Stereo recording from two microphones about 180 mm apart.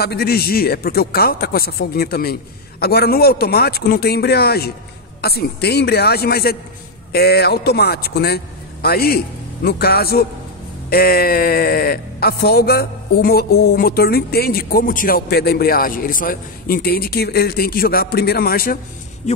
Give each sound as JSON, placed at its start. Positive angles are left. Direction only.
{"t": 0.0, "sound": "speech", "side_deg": 60}
{"t": 19.2, "sound": "speech", "side_deg": 40}